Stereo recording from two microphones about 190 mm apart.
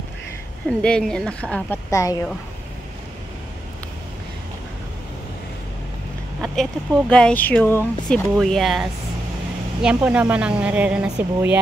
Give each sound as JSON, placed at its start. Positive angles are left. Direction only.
{"t": 0.7, "sound": "speech", "side_deg": 5}
{"t": 1.9, "sound": "speech", "side_deg": 15}
{"t": 6.4, "sound": "speech", "side_deg": 0}
{"t": 8.4, "sound": "a woman's voice", "side_deg": 0}